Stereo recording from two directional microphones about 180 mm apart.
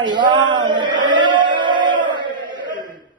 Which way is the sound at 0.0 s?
25° right (ahead or behind).